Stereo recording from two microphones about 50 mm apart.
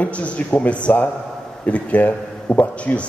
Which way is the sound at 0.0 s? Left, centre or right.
Left.